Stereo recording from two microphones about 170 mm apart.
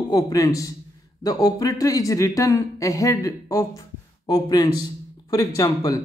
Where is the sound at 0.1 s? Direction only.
20° left (ahead or behind).